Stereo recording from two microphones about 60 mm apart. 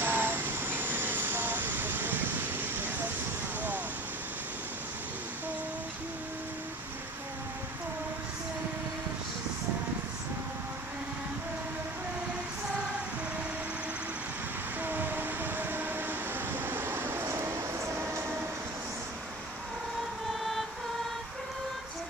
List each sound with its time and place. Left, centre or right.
0.0 s vehicle: right
14.8 s train: right